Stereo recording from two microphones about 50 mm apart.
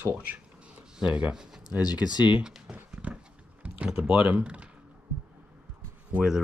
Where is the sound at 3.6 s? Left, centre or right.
Right.